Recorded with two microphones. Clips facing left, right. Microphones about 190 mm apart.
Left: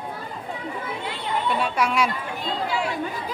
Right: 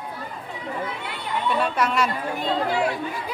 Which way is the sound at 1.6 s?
10° left (ahead or behind).